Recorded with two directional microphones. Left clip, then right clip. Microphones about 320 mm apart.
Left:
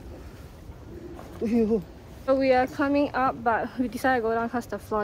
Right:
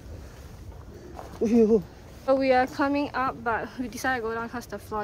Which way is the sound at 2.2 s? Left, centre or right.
Centre.